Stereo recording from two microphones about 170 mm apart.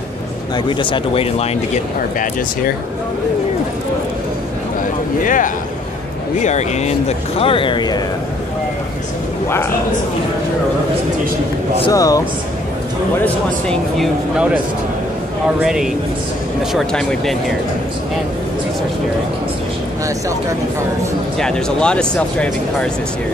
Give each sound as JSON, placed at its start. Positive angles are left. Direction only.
{"t": 0.7, "sound": "speech", "side_deg": 30}
{"t": 5.2, "sound": "a man's voice", "side_deg": 50}
{"t": 11.9, "sound": "speech", "side_deg": 20}
{"t": 13.2, "sound": "speech", "side_deg": 5}
{"t": 15.6, "sound": "speech", "side_deg": -5}
{"t": 21.4, "sound": "speech", "side_deg": 5}